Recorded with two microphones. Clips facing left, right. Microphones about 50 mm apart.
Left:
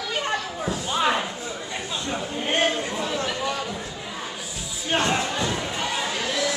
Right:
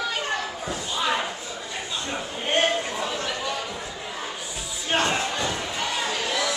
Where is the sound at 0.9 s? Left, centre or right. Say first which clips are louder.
Left 3 dB; left.